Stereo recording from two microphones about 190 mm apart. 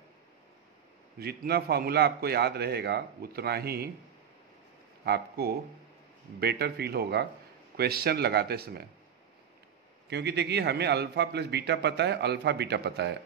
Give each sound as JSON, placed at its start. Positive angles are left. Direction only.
{"t": 1.2, "sound": "a man's voice", "side_deg": -55}
{"t": 5.0, "sound": "a man's voice", "side_deg": -55}
{"t": 10.0, "sound": "a man's voice", "side_deg": -60}